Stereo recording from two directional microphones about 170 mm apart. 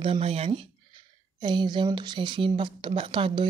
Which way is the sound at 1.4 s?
25° right (ahead or behind).